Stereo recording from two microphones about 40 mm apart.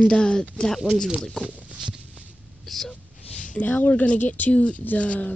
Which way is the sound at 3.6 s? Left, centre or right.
Left.